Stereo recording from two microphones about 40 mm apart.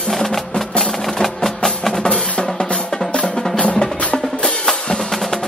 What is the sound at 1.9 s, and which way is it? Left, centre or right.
Drum, left.